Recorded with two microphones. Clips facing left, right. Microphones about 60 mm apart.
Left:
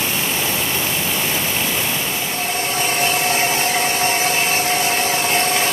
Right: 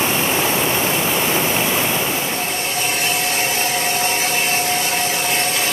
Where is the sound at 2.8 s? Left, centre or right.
Left.